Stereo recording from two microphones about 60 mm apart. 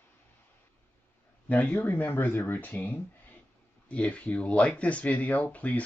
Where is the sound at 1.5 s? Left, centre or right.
Left.